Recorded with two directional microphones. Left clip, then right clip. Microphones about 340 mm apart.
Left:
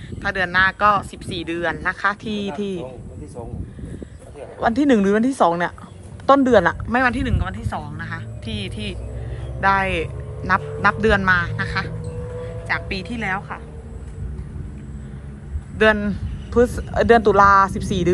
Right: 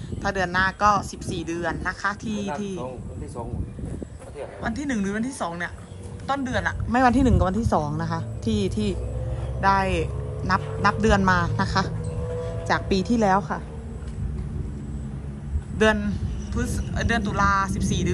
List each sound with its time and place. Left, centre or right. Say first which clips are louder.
0.2 s speech: left 5 dB; centre
4.6 s a man's voice: left 13 dB; centre
15.8 s speech: left 5 dB; centre